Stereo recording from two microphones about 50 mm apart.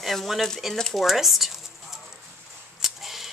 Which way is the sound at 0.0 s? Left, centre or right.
Centre.